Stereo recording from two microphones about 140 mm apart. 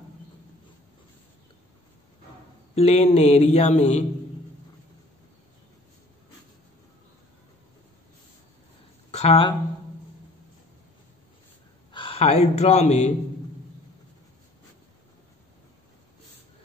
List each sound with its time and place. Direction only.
2.7 s speech: 50° left (ahead or behind)
9.1 s speech: 45° left (ahead or behind)
11.9 s speech: 40° left (ahead or behind)